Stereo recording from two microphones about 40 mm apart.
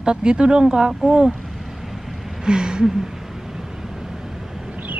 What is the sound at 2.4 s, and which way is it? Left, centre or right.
Speech, right.